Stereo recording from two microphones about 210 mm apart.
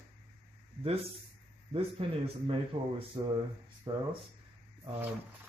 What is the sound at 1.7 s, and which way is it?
Speech, 25° right (ahead or behind).